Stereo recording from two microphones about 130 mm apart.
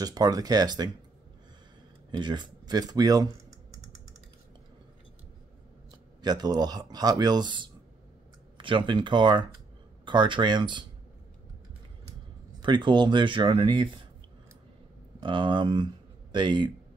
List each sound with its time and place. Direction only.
0.0 s speech: 30° right (ahead or behind)
2.0 s speech: 35° right (ahead or behind)
6.2 s speech: 30° right (ahead or behind)
12.5 s speech: 35° right (ahead or behind)
15.2 s speech: 35° right (ahead or behind)